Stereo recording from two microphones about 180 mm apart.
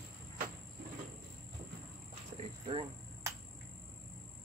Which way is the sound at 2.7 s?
25° right (ahead or behind).